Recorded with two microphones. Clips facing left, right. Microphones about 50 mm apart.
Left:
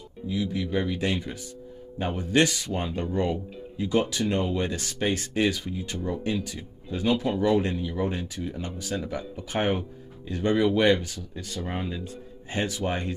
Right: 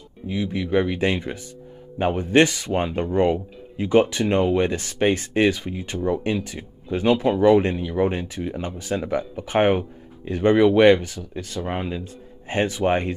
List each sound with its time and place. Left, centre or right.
0.3 s speech: right